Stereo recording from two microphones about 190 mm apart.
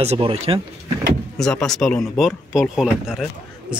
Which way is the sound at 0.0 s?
30° right (ahead or behind).